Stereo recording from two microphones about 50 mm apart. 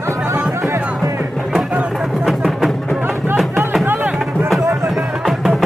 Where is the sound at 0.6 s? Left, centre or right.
Right.